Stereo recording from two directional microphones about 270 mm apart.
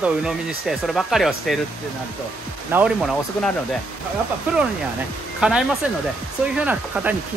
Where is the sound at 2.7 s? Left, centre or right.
Centre.